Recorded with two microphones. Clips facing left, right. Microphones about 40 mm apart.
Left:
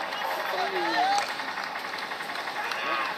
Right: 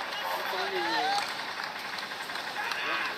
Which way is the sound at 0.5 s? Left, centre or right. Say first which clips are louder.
Left 3 dB; centre.